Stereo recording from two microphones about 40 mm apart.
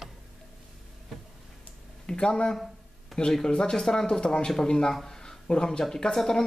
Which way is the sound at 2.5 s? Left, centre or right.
Centre.